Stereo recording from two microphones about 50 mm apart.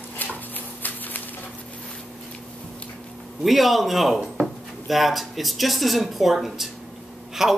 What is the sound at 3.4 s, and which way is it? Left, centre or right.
A man's voice, centre.